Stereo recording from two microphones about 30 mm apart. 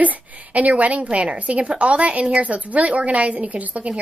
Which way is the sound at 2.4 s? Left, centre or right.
Right.